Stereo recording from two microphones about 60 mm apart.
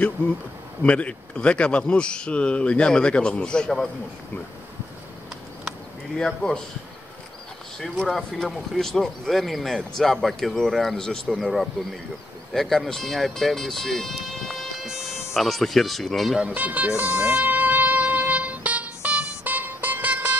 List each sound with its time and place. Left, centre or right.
0.8 s speech: left
6.1 s speech: centre
7.8 s speech: centre
14.9 s music: centre
15.3 s speech: centre
16.5 s music: right